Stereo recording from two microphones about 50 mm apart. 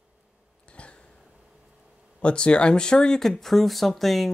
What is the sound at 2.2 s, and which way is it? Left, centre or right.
Speech, left.